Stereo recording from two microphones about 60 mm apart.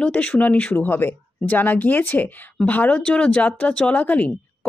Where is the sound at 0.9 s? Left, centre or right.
Left.